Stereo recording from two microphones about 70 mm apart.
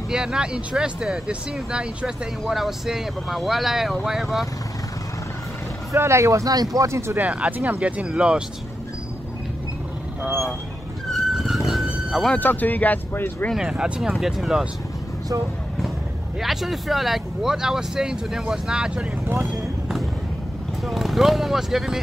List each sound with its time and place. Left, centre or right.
0.1 s speech: centre
5.9 s speech: right
6.5 s speech: right
6.9 s speech: right
7.2 s speech: centre
11.1 s vehicle: centre
12.4 s speech: left
13.6 s speech: centre
16.3 s speech: centre
19.4 s a sound: centre
20.8 s speech: centre